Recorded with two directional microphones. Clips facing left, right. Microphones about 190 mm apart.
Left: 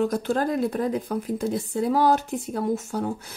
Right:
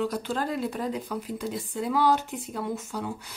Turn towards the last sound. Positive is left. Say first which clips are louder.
# left 5 dB
turn(degrees=45)  # may be behind; listen again after turning